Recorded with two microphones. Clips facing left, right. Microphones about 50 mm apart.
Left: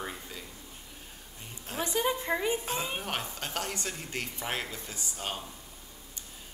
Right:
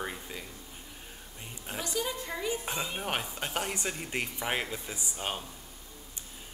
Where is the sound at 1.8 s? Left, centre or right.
Left.